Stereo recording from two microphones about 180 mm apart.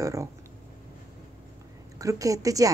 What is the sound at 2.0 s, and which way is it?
Speech, 20° right (ahead or behind).